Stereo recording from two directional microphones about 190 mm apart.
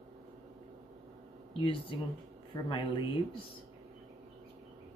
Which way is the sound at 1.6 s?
25° left (ahead or behind).